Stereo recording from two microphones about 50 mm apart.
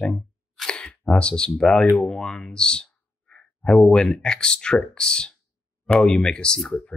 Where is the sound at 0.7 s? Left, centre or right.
Left.